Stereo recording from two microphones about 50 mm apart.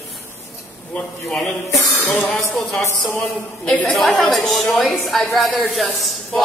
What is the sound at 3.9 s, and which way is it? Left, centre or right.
A woman's voice, centre.